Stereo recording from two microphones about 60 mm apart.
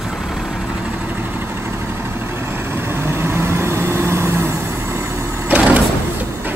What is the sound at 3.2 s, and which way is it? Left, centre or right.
Vehicle, right.